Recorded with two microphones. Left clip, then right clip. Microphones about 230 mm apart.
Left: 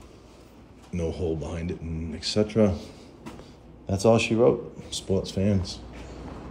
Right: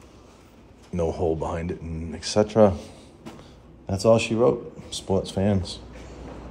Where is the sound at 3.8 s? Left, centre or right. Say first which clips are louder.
Right 2 dB; centre.